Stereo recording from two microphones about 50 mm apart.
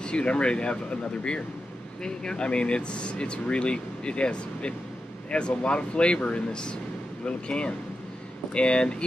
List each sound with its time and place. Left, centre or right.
0.0 s speech: left
2.0 s speech: centre